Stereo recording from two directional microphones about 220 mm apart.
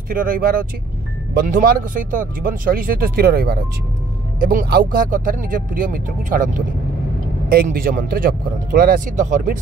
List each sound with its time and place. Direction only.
0.1 s speech: 40° right (ahead or behind)
7.4 s speech: 40° right (ahead or behind)